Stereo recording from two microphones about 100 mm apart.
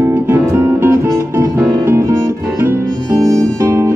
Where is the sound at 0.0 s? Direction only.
25° right (ahead or behind).